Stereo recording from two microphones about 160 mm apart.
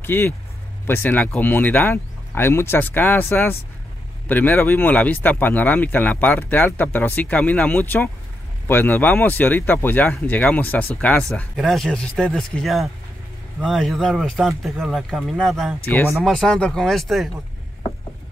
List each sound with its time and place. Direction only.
0.0 s speech: 15° left (ahead or behind)